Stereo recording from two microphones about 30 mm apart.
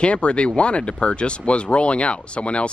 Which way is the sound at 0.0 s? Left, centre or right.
Left.